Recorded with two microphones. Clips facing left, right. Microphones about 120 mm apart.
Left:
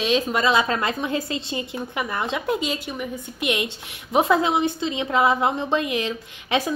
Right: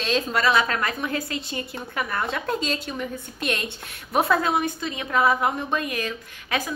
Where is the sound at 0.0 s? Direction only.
15° left (ahead or behind).